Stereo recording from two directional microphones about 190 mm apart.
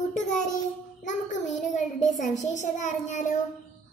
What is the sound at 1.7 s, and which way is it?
A woman's voice, 40° left (ahead or behind).